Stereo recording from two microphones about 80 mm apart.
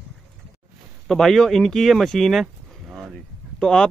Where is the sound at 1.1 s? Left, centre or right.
Centre.